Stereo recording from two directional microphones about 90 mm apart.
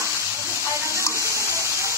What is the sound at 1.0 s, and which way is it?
Water, 35° left (ahead or behind).